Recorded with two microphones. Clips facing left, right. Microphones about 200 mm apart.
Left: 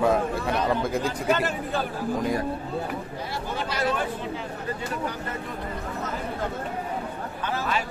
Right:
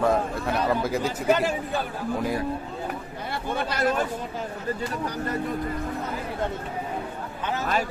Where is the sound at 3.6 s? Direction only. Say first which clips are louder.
Right 2 dB; 55° right (ahead or behind).